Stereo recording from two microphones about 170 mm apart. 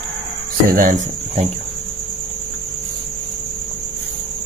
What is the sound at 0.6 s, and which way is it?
Cricket, 50° right (ahead or behind).